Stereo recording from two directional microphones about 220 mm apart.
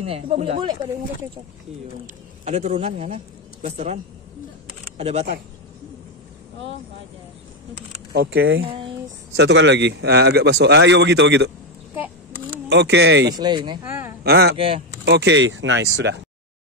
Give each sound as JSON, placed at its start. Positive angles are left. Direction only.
{"t": 0.0, "sound": "speech", "side_deg": -25}
{"t": 2.4, "sound": "speech", "side_deg": -30}
{"t": 8.1, "sound": "speech", "side_deg": -45}
{"t": 12.6, "sound": "speech", "side_deg": -50}
{"t": 13.4, "sound": "speech", "side_deg": -20}
{"t": 14.2, "sound": "speech", "side_deg": -45}